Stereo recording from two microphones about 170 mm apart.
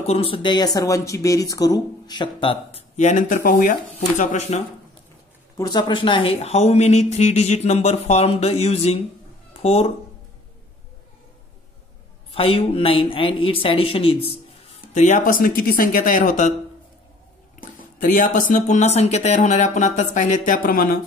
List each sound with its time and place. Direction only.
0.0 s a woman's voice: 35° left (ahead or behind)
5.6 s a woman's voice: 25° left (ahead or behind)
12.3 s a woman's voice: 35° left (ahead or behind); by 16.5 s 50° left (ahead or behind)
17.6 s speech: 55° left (ahead or behind)